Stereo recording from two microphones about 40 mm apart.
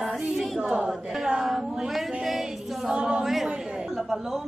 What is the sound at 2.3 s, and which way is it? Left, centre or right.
A capella, centre.